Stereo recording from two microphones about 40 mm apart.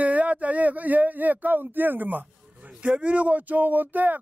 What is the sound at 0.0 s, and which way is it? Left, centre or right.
Speech, right.